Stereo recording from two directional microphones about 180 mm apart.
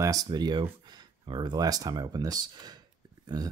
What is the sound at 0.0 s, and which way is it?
Speech, 20° right (ahead or behind).